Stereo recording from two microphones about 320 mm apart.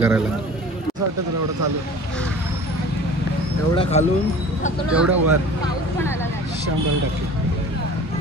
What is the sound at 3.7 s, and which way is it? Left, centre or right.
Speech, centre.